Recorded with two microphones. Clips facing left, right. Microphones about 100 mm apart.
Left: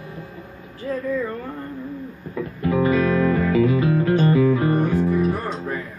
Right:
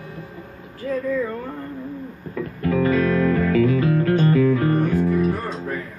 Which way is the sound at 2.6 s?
15° left (ahead or behind).